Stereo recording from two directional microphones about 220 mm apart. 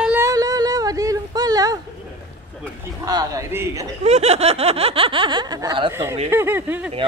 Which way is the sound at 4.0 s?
30° right (ahead or behind).